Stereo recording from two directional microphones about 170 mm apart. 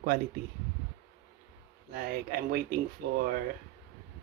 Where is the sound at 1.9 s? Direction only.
60° right (ahead or behind).